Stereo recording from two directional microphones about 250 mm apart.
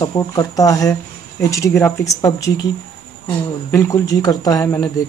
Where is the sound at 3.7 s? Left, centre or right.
Centre.